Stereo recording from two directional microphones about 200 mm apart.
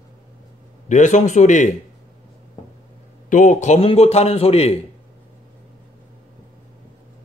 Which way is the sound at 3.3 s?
40° left (ahead or behind).